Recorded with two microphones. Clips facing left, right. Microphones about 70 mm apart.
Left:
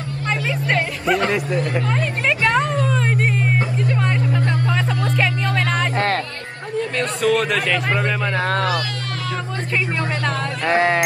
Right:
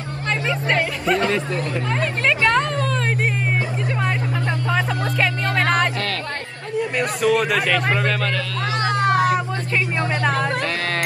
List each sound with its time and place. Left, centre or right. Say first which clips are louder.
0.5 s music: right 1 dB; left
1.9 s music: even; centre
5.5 s music: right 2 dB; right
7.2 s speech: even; centre
10.6 s music: left 7 dB; left